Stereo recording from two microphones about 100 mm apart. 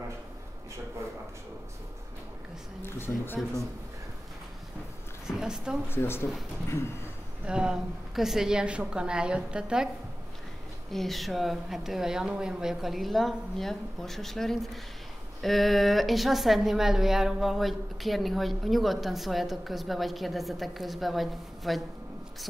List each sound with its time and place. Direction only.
2.8 s a woman's voice: 20° left (ahead or behind)
5.2 s a woman's voice: 5° right (ahead or behind)
5.9 s a woman's voice: 25° left (ahead or behind)
7.4 s a woman's voice: 10° right (ahead or behind)
10.9 s a woman's voice: centre (ahead or behind)